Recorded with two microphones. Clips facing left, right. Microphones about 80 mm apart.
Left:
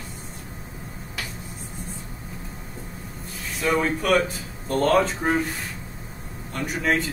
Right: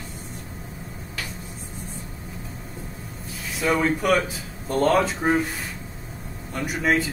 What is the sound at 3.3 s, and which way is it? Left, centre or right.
Speech, centre.